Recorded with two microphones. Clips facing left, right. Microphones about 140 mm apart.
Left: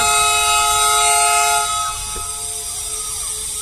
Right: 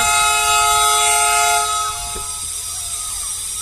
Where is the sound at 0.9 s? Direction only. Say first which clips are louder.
Left 1 dB; 25° left (ahead or behind).